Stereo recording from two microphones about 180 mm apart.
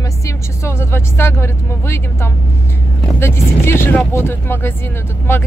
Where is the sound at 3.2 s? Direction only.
15° left (ahead or behind).